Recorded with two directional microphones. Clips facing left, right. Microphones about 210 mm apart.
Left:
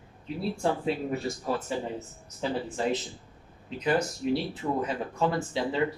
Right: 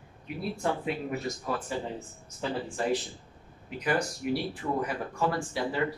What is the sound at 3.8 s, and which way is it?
Speech, 20° left (ahead or behind).